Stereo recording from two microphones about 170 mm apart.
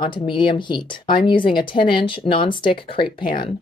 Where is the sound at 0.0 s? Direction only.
30° left (ahead or behind).